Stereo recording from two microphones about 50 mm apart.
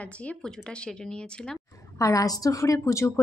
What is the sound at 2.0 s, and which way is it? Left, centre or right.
A woman's voice, left.